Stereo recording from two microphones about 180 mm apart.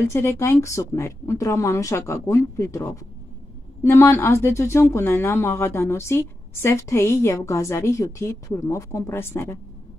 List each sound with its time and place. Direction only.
0.1 s speech: 15° left (ahead or behind)